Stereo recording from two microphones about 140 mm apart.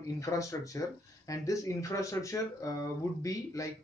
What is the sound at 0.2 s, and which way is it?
Speech, 25° left (ahead or behind).